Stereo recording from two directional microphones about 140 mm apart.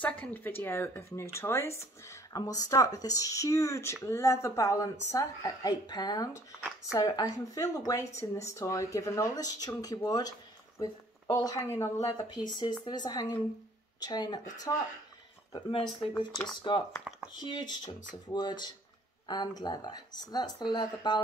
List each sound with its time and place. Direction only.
0.0 s speech: 10° left (ahead or behind); by 14.7 s 30° left (ahead or behind)
16.0 s speech: 35° left (ahead or behind)